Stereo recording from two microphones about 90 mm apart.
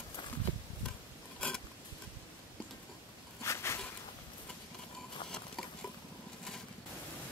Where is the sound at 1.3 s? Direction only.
15° left (ahead or behind).